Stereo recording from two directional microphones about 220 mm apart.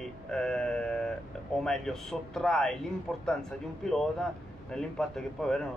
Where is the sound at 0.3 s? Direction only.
5° left (ahead or behind).